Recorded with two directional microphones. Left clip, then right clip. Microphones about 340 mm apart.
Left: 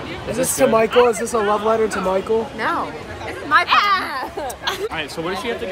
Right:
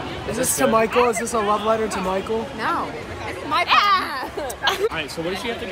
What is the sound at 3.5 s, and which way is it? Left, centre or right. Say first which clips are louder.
Chatter: left 2 dB; centre.